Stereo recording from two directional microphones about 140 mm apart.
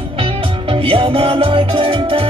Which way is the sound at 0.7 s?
40° right (ahead or behind).